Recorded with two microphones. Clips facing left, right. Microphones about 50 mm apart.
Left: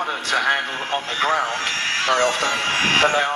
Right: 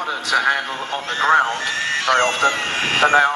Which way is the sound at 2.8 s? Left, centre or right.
Left.